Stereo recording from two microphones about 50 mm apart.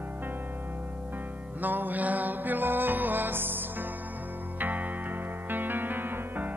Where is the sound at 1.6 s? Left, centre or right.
Right.